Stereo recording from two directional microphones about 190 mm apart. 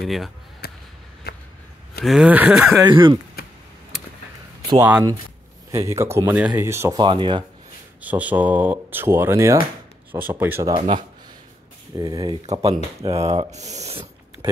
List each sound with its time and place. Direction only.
0.0 s speech: centre (ahead or behind)
0.6 s a sound: 55° left (ahead or behind)
2.0 s speech: 5° right (ahead or behind)
2.9 s speech: 25° right (ahead or behind)
4.6 s speech: 10° right (ahead or behind)
7.0 s speech: 25° right (ahead or behind)
8.0 s speech: 10° right (ahead or behind)
13.2 s speech: 35° right (ahead or behind)